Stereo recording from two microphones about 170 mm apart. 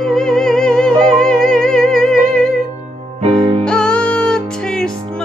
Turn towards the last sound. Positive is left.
turn(degrees=5)  # may be behind; listen again after turning